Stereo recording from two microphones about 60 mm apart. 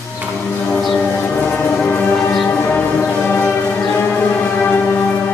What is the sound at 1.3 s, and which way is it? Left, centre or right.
Train, left.